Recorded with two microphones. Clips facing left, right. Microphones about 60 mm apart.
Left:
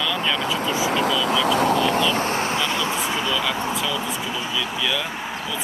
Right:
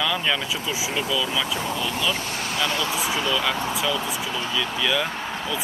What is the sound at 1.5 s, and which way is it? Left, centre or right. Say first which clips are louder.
Speech: left 8 dB; left.